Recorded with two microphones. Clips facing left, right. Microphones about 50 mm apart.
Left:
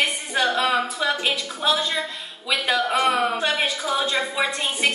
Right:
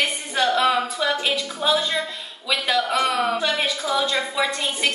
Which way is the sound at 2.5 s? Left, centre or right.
Left.